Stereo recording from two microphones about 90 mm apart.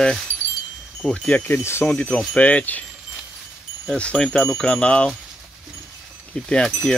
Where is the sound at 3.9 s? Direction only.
10° left (ahead or behind).